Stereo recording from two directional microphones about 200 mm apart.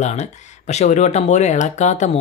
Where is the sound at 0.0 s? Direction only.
35° left (ahead or behind).